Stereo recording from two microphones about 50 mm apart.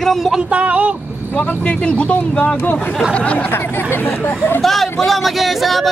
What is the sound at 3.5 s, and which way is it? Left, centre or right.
Speech, left.